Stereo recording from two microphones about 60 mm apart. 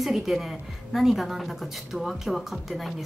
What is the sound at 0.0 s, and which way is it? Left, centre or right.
A woman's voice, centre.